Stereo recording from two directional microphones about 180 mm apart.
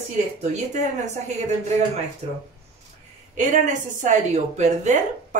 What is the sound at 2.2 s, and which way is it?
A woman's voice, 35° right (ahead or behind).